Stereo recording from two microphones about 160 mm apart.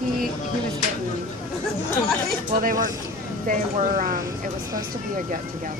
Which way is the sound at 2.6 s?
60° right (ahead or behind).